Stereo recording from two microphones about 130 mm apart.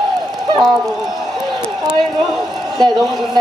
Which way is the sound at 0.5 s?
Centre (ahead or behind).